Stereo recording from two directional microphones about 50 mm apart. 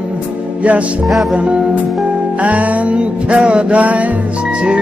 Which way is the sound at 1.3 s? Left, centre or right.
Right.